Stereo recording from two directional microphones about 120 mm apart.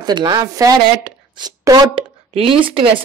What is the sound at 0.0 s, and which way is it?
Speech, 40° right (ahead or behind).